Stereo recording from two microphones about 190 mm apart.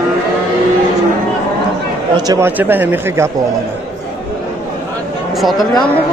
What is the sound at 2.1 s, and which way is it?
Speech, 15° right (ahead or behind).